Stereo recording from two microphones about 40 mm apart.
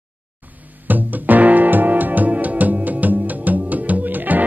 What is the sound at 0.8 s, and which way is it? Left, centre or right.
Music, right.